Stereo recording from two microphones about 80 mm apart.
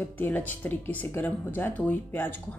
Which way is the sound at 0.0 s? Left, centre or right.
Left.